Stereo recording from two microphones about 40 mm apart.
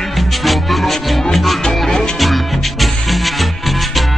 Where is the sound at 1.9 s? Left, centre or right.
Centre.